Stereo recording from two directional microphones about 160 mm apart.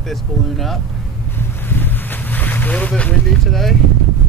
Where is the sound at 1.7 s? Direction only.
10° left (ahead or behind).